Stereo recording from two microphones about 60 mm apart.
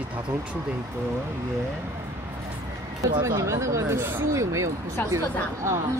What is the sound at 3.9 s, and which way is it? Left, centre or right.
Speech, right.